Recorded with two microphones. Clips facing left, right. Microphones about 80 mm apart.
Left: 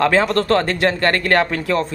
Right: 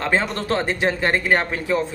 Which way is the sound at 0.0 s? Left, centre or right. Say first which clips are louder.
Left 6 dB; left.